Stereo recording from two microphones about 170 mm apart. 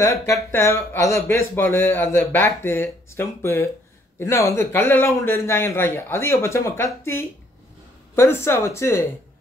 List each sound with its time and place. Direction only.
0.0 s speech: 15° left (ahead or behind)